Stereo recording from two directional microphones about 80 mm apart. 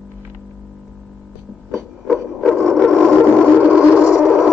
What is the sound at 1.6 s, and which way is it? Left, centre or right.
Music, centre.